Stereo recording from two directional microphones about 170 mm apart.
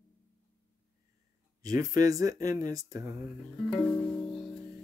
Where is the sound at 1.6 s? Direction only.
20° right (ahead or behind).